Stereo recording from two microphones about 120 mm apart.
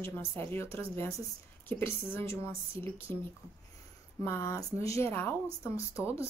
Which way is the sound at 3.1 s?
50° right (ahead or behind).